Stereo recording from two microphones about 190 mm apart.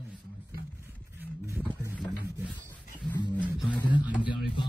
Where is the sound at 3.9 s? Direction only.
10° right (ahead or behind).